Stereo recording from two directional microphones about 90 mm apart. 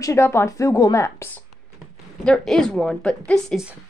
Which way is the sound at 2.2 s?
5° left (ahead or behind).